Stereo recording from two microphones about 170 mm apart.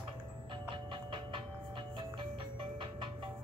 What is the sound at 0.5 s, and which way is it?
Music, 30° right (ahead or behind).